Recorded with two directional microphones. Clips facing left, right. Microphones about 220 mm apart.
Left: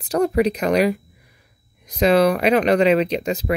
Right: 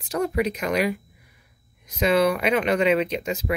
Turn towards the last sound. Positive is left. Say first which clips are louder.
# left 4 dB
turn(degrees=35)  # may be behind; listen again after turning